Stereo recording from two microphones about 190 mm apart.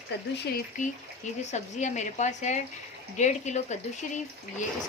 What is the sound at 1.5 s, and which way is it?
A woman's voice, 40° left (ahead or behind).